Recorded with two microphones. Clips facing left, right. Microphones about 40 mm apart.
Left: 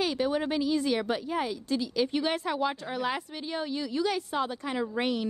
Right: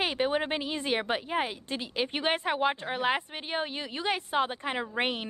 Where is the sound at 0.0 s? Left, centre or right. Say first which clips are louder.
Even; right.